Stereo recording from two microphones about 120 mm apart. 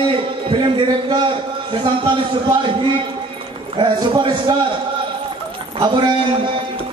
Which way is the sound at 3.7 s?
40° right (ahead or behind).